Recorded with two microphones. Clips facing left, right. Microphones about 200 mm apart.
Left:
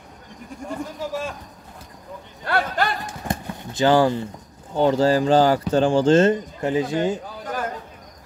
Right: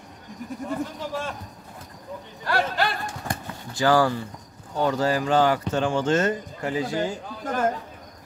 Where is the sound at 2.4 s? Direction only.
60° left (ahead or behind).